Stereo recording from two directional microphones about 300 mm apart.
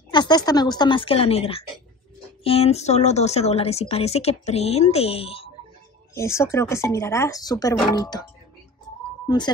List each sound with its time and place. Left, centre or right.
0.1 s speech: centre